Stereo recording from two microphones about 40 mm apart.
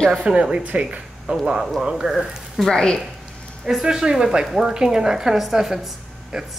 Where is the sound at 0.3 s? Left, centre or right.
Right.